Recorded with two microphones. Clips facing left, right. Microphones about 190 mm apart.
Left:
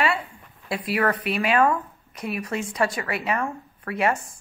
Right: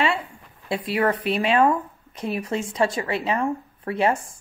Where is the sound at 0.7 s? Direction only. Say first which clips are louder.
Right 2 dB; 25° right (ahead or behind).